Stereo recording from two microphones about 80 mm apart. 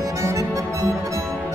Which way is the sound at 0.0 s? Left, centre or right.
Right.